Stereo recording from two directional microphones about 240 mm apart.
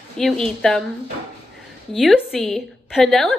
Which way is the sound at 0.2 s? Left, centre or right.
Centre.